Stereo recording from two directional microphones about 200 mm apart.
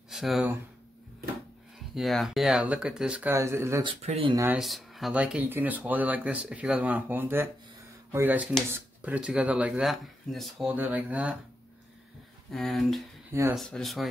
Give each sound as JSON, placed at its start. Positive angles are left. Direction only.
{"t": 0.1, "sound": "speech", "side_deg": 0}
{"t": 2.0, "sound": "speech", "side_deg": 0}
{"t": 3.8, "sound": "speech", "side_deg": -30}
{"t": 4.6, "sound": "speech", "side_deg": 0}
{"t": 12.4, "sound": "speech", "side_deg": 0}
{"t": 13.3, "sound": "speech", "side_deg": -15}
{"t": 13.6, "sound": "speech", "side_deg": 0}